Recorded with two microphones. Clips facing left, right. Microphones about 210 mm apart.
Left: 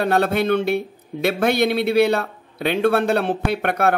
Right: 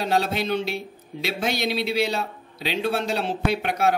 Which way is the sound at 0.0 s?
55° left (ahead or behind).